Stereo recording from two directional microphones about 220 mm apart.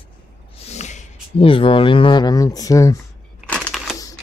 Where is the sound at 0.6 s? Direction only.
30° left (ahead or behind).